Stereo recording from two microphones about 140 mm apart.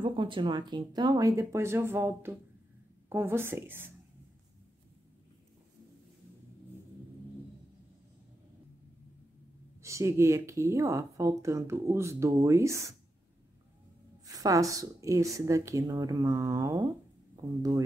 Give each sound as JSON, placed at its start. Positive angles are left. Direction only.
{"t": 0.0, "sound": "a woman's voice", "side_deg": -35}
{"t": 9.8, "sound": "a woman's voice", "side_deg": -20}
{"t": 14.2, "sound": "a woman's voice", "side_deg": -25}